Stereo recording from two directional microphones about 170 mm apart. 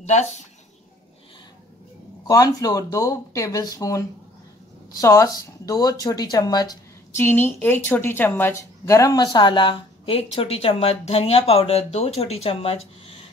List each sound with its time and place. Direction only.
0.0 s speech: 40° left (ahead or behind)
2.2 s speech: 20° left (ahead or behind)
7.2 s speech: 10° left (ahead or behind); by 12.8 s 35° left (ahead or behind)